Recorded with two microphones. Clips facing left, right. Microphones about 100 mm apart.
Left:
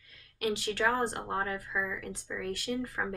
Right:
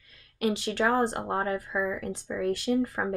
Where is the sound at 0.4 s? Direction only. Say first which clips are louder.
Right 4 dB; 25° right (ahead or behind).